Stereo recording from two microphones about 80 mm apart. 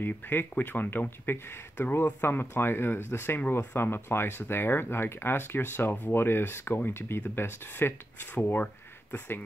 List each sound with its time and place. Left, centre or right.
0.0 s speech: left